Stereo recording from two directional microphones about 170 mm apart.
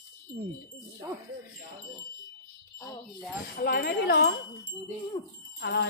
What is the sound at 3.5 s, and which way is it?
Speech, 60° left (ahead or behind).